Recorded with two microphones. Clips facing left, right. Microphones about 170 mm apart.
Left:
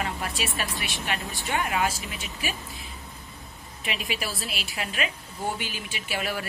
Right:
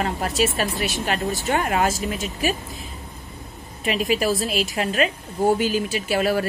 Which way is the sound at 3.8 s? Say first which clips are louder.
Right 11 dB; 40° right (ahead or behind).